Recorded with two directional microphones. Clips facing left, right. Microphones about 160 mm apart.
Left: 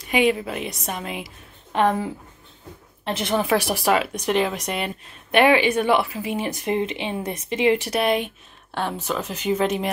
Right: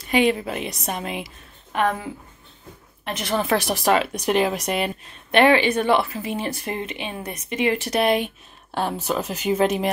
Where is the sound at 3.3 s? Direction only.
10° left (ahead or behind).